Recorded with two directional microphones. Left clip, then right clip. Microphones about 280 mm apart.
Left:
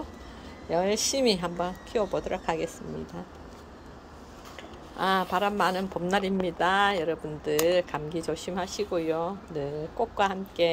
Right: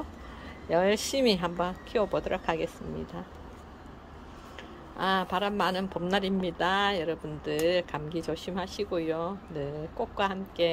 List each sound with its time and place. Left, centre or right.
0.7 s speech: centre
0.9 s speech: right
1.2 s speech: centre
4.9 s speech: centre